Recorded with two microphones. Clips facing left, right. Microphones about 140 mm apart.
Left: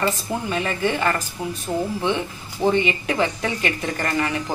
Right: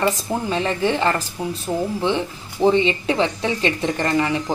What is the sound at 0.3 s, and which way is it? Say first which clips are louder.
Speech: right 3 dB; 30° right (ahead or behind).